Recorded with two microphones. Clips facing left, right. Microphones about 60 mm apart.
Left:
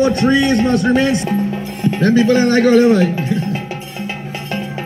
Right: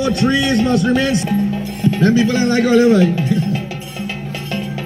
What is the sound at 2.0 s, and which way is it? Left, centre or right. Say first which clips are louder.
Speech: left 3 dB; left.